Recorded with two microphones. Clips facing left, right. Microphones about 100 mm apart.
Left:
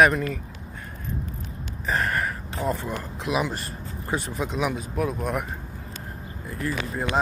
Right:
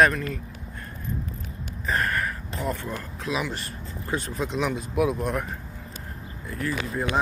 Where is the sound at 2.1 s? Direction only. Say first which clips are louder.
Left 1 dB; 25° left (ahead or behind).